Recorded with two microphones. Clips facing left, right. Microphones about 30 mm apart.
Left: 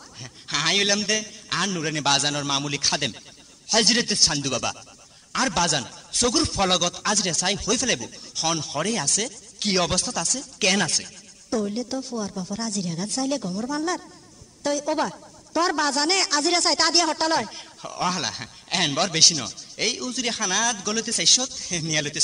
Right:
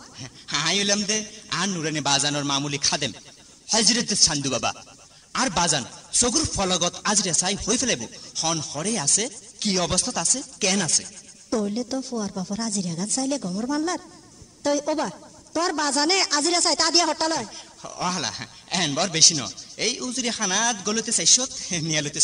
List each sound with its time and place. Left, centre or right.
0.2 s speech: centre
0.7 s a man's voice: centre
6.3 s a man's voice: left
6.8 s speech: centre
7.2 s speech: centre
10.6 s a woman's voice: left
11.5 s a woman's voice: centre
15.5 s speech: centre
17.3 s speech: left; by 22.0 s centre